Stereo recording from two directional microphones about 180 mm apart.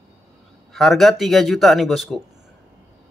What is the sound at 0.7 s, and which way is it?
A man's voice, centre (ahead or behind).